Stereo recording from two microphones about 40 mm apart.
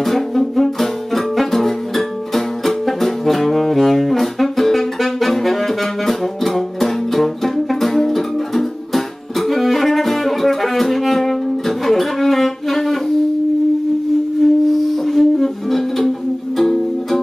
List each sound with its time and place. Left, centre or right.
0.0 s music: centre
14.4 s music: centre